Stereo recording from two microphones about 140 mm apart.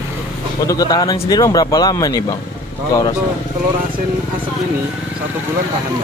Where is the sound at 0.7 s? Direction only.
25° left (ahead or behind).